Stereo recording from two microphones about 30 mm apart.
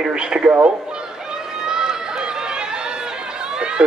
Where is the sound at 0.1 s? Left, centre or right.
Right.